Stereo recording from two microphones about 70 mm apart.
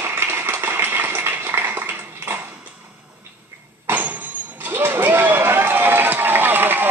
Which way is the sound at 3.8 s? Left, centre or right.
Right.